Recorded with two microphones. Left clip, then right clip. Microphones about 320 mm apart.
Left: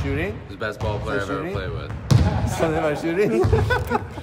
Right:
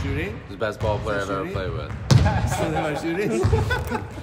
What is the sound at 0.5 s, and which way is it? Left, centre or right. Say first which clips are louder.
A man's voice: right 3 dB; centre.